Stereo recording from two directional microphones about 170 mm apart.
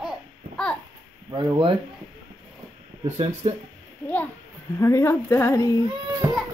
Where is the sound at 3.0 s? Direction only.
40° right (ahead or behind).